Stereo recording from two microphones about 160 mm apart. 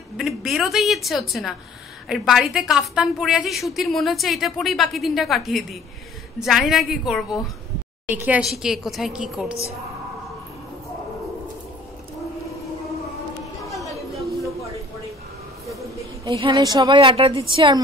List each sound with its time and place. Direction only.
0.2 s a woman's voice: centre (ahead or behind)
13.7 s chatter: centre (ahead or behind)
14.1 s a sound: centre (ahead or behind)
16.3 s a woman's voice: 35° right (ahead or behind)